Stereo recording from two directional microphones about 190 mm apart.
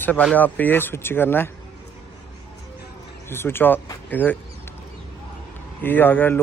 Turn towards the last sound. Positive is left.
turn(degrees=10)  # may be behind; listen again after turning